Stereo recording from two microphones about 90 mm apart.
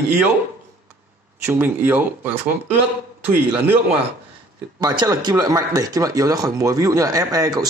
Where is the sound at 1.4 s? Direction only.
25° right (ahead or behind).